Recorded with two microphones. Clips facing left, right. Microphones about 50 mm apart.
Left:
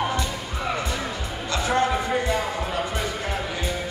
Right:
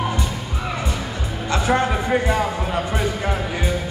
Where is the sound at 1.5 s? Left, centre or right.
Right.